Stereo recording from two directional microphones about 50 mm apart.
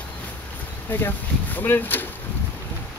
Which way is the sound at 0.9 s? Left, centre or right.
Left.